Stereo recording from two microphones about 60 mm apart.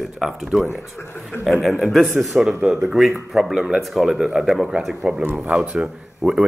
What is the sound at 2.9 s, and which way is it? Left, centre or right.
A man's voice, centre.